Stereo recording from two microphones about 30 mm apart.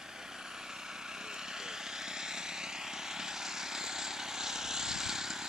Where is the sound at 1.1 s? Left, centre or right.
Centre.